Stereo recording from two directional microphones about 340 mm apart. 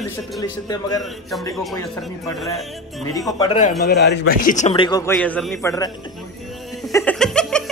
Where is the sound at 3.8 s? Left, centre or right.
Left; by 5.9 s centre.